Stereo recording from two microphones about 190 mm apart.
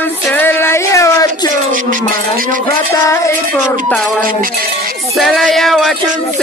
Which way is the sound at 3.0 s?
15° left (ahead or behind).